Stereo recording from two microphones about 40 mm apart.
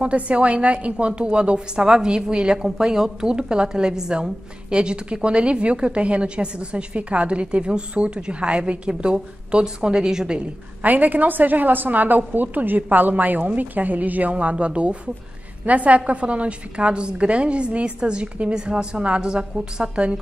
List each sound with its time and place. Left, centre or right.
0.0 s a woman's voice: right
10.8 s a woman's voice: right
14.3 s a woman's voice: right